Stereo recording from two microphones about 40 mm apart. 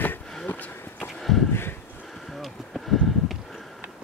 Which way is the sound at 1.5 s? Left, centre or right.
Left.